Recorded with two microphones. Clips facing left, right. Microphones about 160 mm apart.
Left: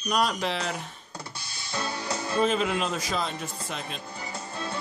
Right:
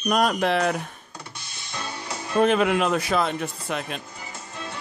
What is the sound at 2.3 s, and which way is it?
Speech, 65° right (ahead or behind).